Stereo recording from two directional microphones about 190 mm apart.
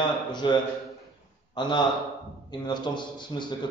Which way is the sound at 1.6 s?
25° left (ahead or behind).